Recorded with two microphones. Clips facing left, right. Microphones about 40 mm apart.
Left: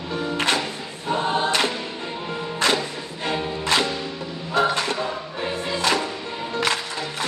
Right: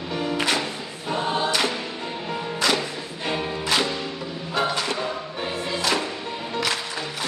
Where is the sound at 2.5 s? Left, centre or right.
Left.